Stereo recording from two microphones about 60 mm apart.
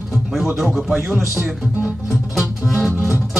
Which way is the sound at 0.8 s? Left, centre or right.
Centre.